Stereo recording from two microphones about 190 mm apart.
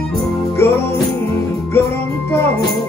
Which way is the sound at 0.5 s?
15° left (ahead or behind).